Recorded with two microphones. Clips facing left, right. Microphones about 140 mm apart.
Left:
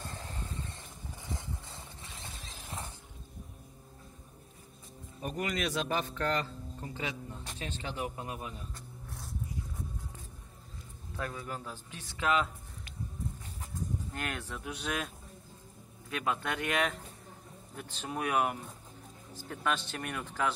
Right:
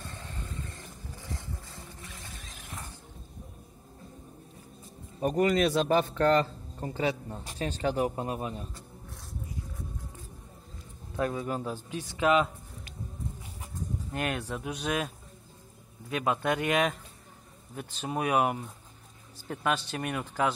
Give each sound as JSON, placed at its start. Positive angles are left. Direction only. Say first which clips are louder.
{"t": 1.2, "sound": "a sound", "louder": "even", "side_deg": 20}
{"t": 5.2, "sound": "speech", "louder": "right 10 dB", "side_deg": -35}
{"t": 11.1, "sound": "speech", "louder": "right 8 dB", "side_deg": -25}
{"t": 14.1, "sound": "speech", "louder": "right 6 dB", "side_deg": -20}
{"t": 16.1, "sound": "speech", "louder": "right 6 dB", "side_deg": -20}